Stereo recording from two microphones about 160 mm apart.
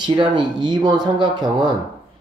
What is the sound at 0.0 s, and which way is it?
Speech, 30° right (ahead or behind).